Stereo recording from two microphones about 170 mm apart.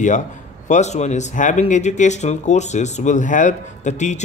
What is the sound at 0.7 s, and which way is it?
Speech, 45° left (ahead or behind).